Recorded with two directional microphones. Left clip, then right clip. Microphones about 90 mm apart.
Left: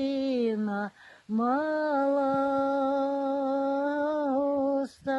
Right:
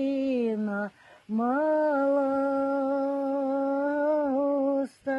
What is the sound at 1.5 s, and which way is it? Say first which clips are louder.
Humming: right 5 dB; 10° left (ahead or behind).